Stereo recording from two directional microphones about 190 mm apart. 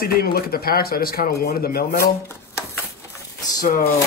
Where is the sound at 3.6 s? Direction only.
45° left (ahead or behind).